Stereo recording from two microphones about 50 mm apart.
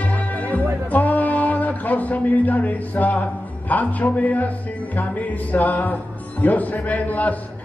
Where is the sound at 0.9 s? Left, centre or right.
Left.